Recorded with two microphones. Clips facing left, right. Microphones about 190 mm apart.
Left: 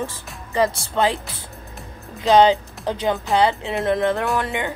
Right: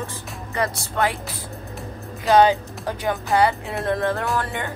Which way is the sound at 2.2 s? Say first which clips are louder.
Left 2 dB; 20° left (ahead or behind).